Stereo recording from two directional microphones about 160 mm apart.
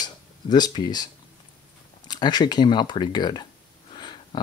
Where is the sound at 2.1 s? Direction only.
25° left (ahead or behind).